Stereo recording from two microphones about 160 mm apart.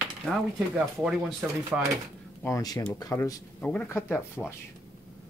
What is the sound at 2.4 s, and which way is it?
Speech, 20° left (ahead or behind).